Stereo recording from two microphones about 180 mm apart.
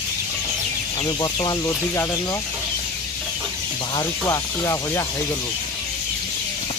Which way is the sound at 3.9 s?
20° left (ahead or behind).